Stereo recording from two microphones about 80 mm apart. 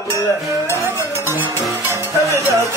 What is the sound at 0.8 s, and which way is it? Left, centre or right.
Music, right.